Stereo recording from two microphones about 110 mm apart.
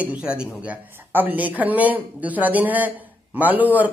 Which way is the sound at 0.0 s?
10° right (ahead or behind).